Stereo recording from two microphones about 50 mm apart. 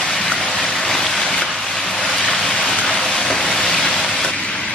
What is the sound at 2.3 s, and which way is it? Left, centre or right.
Rain, centre.